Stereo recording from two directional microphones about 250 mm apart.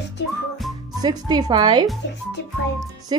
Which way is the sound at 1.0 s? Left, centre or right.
Centre.